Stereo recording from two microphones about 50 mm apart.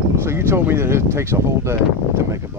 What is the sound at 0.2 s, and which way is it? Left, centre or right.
Speech, right.